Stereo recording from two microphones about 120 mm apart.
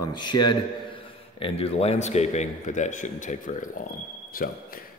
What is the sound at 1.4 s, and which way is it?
A man's voice, 50° left (ahead or behind).